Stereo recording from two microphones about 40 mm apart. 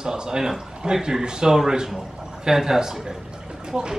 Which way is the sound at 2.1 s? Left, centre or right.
Centre.